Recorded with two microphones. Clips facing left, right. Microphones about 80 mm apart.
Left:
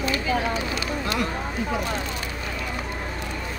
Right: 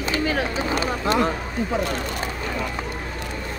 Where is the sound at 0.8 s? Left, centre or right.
Right.